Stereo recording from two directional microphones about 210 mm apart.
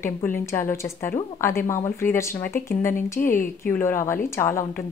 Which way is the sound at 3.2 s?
40° left (ahead or behind).